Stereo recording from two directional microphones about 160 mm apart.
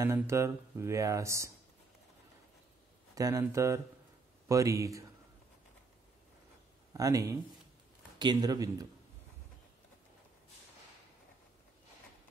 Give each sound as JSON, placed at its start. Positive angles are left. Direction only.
{"t": 0.0, "sound": "speech", "side_deg": -15}
{"t": 3.2, "sound": "speech", "side_deg": -20}
{"t": 6.9, "sound": "speech", "side_deg": -20}